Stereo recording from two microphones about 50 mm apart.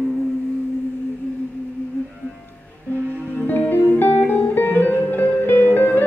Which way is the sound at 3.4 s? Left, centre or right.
Left.